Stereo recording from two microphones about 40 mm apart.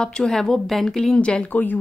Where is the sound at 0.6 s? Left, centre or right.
Centre.